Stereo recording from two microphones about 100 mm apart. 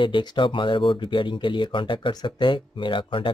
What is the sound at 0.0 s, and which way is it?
Speech, 50° left (ahead or behind).